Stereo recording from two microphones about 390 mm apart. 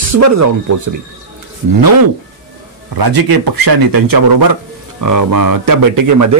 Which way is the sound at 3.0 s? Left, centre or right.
Right.